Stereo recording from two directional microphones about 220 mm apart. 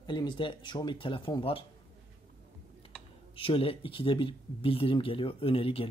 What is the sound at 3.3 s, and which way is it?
Speech, 25° left (ahead or behind).